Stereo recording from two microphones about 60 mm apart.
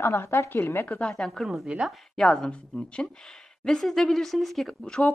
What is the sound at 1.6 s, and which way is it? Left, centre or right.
Speech, centre.